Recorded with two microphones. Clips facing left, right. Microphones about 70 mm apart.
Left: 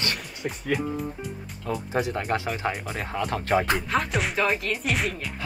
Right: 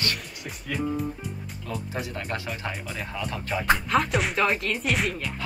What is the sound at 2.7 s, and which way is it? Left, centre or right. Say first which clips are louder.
Speech: left 3 dB; left.